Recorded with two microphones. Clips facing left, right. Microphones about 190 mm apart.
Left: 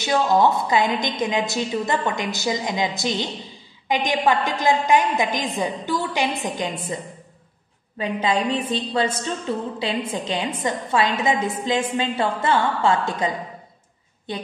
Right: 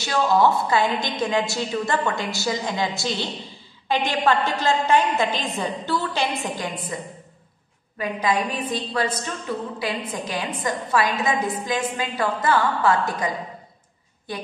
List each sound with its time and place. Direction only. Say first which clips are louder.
0.0 s a woman's voice: left 1 dB; 20° left (ahead or behind)
8.0 s a woman's voice: left 1 dB; 25° left (ahead or behind)